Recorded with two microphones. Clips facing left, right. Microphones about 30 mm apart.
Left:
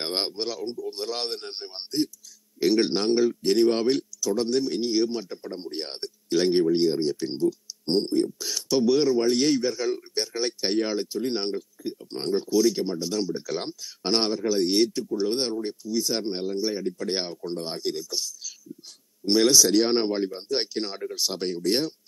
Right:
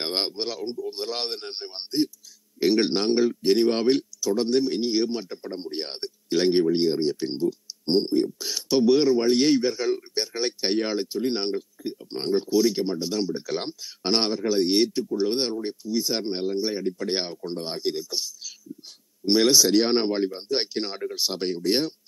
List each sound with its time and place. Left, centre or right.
0.0 s a man's voice: centre